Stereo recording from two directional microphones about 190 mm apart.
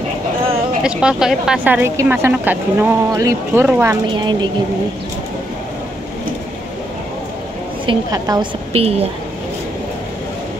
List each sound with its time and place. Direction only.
0.8 s speech: 5° right (ahead or behind)
4.1 s a woman's voice: 25° right (ahead or behind)
7.8 s a woman's voice: 25° right (ahead or behind)